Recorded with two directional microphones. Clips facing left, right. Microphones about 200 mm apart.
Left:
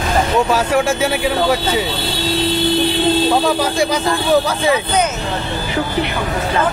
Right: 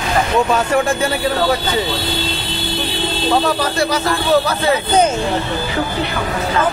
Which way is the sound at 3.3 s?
10° left (ahead or behind).